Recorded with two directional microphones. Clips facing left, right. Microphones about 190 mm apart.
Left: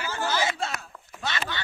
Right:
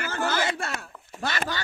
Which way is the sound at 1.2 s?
45° right (ahead or behind).